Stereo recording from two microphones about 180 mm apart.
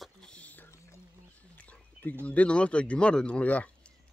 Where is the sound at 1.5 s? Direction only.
10° left (ahead or behind).